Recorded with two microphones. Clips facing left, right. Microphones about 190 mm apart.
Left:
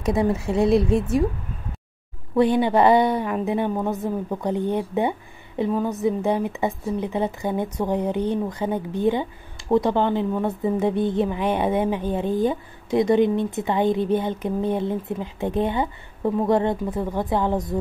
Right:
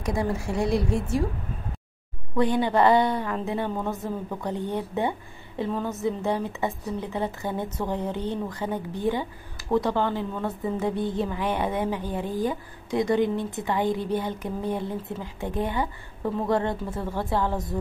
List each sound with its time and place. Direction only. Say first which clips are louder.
0.0 s speech: left 5 dB; 20° left (ahead or behind)
2.3 s a woman's voice: left 4 dB; 20° left (ahead or behind)